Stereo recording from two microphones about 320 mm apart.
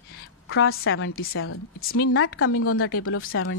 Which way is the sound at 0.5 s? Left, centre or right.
Left.